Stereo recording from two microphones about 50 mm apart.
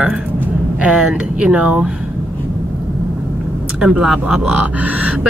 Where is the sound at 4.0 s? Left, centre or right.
Centre.